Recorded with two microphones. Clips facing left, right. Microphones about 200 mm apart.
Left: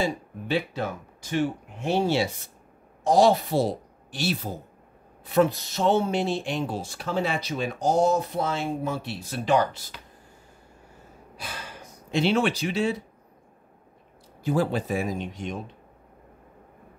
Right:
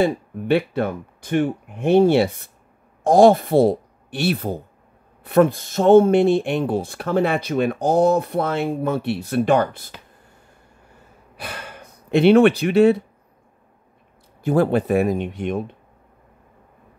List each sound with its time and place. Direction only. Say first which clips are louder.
0.0 s speech: right 8 dB; 60° right (ahead or behind)
11.3 s speech: right 5 dB; 60° right (ahead or behind)
14.4 s speech: right 7 dB; 55° right (ahead or behind)